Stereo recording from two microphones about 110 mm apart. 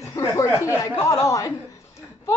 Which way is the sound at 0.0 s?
30° left (ahead or behind).